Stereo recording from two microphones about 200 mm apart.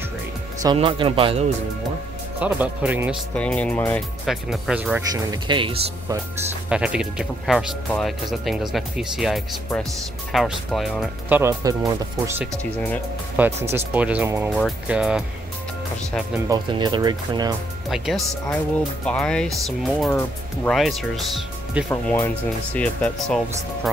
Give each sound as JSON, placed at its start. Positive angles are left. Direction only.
{"t": 0.7, "sound": "speech", "side_deg": -25}
{"t": 2.4, "sound": "speech", "side_deg": -5}
{"t": 3.3, "sound": "speech", "side_deg": 5}
{"t": 4.3, "sound": "speech", "side_deg": -5}
{"t": 5.1, "sound": "speech", "side_deg": -20}
{"t": 6.7, "sound": "speech", "side_deg": -5}
{"t": 13.7, "sound": "speech", "side_deg": -10}
{"t": 16.4, "sound": "speech", "side_deg": -20}
{"t": 17.8, "sound": "speech", "side_deg": 0}